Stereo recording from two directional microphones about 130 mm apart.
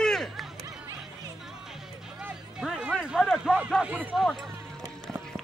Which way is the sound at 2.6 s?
Centre (ahead or behind).